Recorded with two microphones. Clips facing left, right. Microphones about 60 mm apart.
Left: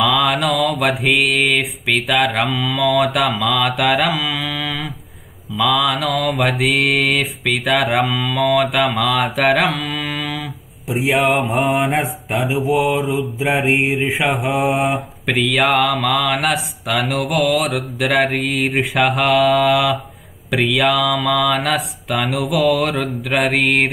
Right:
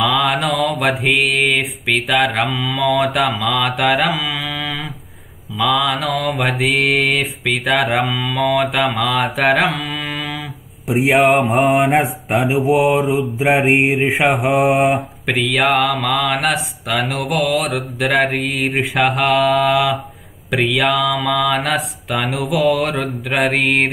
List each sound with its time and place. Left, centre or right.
0.0 s mantra: centre
10.9 s a man's voice: right
11.4 s mantra: centre
13.7 s mantra: right
14.3 s mantra: centre